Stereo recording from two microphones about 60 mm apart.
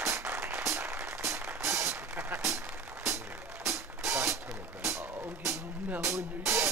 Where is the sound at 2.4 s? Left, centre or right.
Right.